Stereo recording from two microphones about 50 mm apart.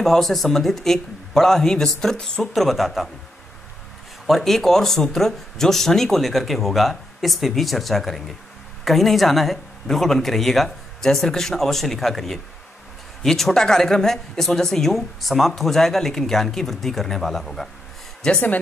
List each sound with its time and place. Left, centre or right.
0.0 s speech: centre
2.4 s speech: centre
4.3 s speech: centre
18.2 s speech: centre